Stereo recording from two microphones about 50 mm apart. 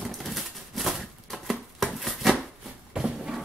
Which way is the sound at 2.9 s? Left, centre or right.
Centre.